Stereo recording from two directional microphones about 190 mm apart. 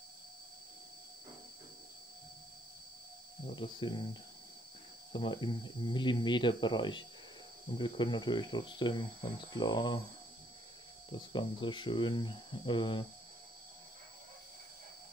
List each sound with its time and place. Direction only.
3.4 s speech: 25° left (ahead or behind)
11.1 s speech: 25° left (ahead or behind)